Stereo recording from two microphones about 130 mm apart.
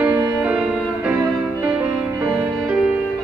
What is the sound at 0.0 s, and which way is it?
Music, 10° right (ahead or behind).